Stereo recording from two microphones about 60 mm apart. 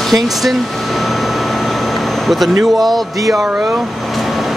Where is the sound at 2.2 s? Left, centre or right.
Centre.